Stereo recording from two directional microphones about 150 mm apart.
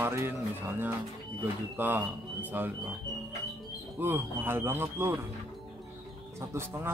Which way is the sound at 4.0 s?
15° right (ahead or behind).